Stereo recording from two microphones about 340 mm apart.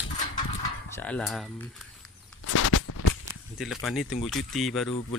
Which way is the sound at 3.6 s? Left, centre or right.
Centre.